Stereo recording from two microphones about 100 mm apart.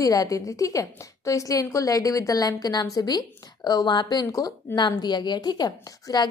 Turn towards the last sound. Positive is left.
turn(degrees=40)  # may be behind; listen again after turning